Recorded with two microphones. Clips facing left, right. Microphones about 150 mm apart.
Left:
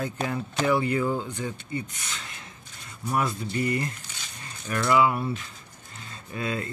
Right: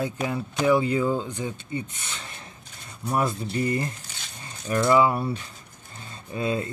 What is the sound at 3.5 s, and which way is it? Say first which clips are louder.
Speech: right 1 dB; 30° right (ahead or behind).